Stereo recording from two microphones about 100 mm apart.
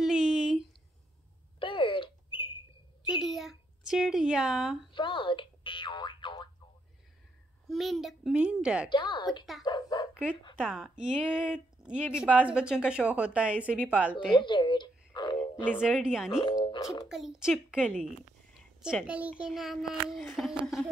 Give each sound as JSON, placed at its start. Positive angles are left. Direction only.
{"t": 0.0, "sound": "a sound", "side_deg": -5}
{"t": 1.6, "sound": "a sound", "side_deg": 55}
{"t": 3.1, "sound": "a sound", "side_deg": 0}
{"t": 4.9, "sound": "boing", "side_deg": 55}
{"t": 7.6, "sound": "a child's voice", "side_deg": 0}
{"t": 8.8, "sound": "a woman's voice", "side_deg": 50}
{"t": 10.6, "sound": "speech", "side_deg": -10}
{"t": 14.3, "sound": "speech", "side_deg": 50}
{"t": 15.8, "sound": "speech", "side_deg": -5}
{"t": 16.6, "sound": "a child's voice", "side_deg": 60}
{"t": 17.1, "sound": "speech", "side_deg": -5}
{"t": 19.0, "sound": "a child's voice", "side_deg": -10}